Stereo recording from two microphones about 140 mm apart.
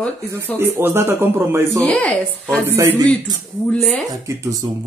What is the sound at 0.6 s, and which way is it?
Speech, 15° right (ahead or behind).